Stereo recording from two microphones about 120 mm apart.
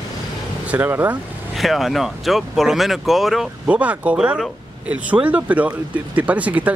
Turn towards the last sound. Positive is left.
turn(degrees=-10)  # may be behind; listen again after turning